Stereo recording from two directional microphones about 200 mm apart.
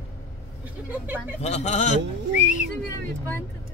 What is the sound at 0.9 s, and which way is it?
Speech, 10° right (ahead or behind).